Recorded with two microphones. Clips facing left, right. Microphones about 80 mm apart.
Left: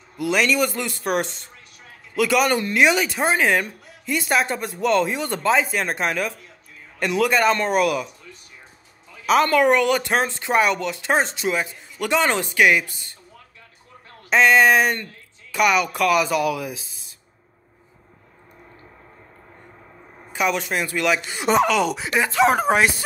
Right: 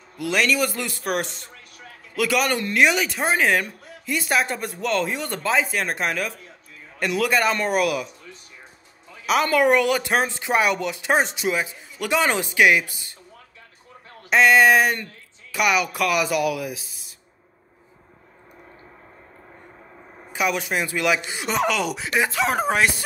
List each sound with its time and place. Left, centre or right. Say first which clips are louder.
0.2 s speech: left 2 dB; centre
9.2 s speech: left 2 dB; centre
14.3 s speech: even; centre
20.3 s speech: left 1 dB; centre
21.9 s speech: left 1 dB; centre
22.4 s speech: left 6 dB; left